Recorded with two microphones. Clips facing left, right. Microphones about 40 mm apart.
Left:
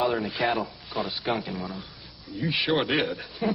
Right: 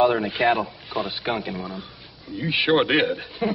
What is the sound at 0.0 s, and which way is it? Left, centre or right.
Speech, centre.